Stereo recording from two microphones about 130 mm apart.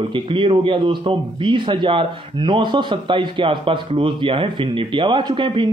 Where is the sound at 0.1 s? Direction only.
40° right (ahead or behind).